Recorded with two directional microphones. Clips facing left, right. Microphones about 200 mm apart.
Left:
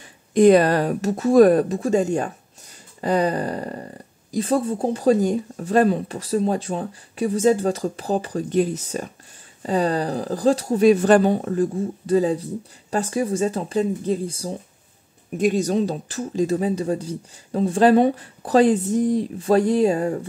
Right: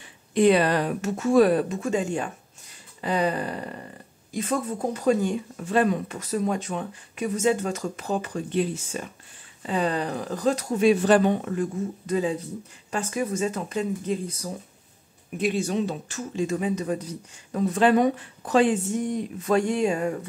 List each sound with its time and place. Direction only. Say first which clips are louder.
0.3 s speech: left 5 dB; 45° left (ahead or behind)
15.3 s speech: left 5 dB; 45° left (ahead or behind)